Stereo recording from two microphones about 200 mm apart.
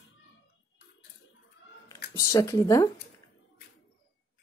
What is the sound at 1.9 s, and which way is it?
Speech, 20° left (ahead or behind).